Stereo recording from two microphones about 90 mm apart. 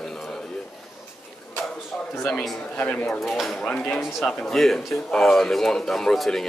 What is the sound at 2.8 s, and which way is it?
Speech, 15° left (ahead or behind).